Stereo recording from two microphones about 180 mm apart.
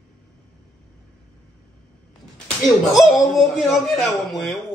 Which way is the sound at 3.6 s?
Centre (ahead or behind).